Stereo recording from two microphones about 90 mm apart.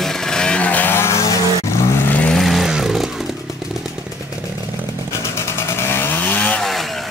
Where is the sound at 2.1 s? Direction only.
15° left (ahead or behind).